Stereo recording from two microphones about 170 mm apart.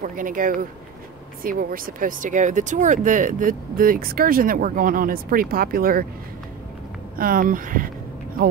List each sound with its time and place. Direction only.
0.0 s speech: 55° right (ahead or behind)
7.2 s speech: 55° right (ahead or behind)